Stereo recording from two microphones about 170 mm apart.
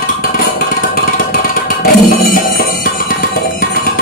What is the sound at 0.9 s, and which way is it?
Music, 60° left (ahead or behind).